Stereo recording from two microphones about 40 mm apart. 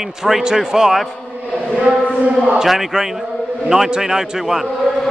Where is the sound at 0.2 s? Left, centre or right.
Centre.